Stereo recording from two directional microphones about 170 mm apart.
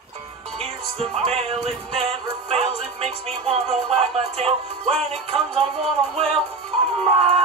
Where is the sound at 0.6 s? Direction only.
35° right (ahead or behind).